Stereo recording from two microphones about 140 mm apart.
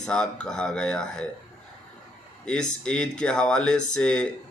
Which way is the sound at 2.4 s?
5° left (ahead or behind).